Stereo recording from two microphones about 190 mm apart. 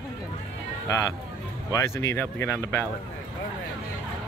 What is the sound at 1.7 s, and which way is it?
Speech, 15° left (ahead or behind).